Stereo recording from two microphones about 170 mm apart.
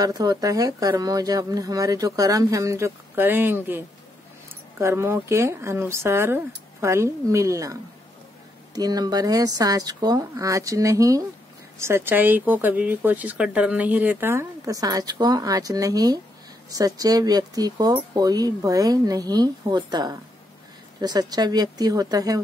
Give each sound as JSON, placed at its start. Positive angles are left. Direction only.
{"t": 0.0, "sound": "speech", "side_deg": -20}